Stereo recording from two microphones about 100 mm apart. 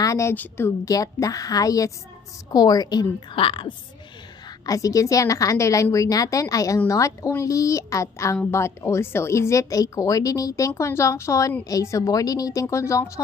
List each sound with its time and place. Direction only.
0.0 s a sound: 35° left (ahead or behind)
0.3 s a woman's voice: 20° left (ahead or behind)
0.8 s a woman's voice: 35° left (ahead or behind)
3.3 s a woman's voice: 60° left (ahead or behind)
4.6 s a woman's voice: 35° left (ahead or behind)